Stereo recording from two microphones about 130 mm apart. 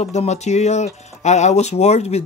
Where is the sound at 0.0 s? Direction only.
60° left (ahead or behind).